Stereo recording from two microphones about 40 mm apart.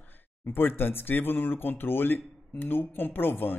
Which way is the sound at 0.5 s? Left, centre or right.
Left.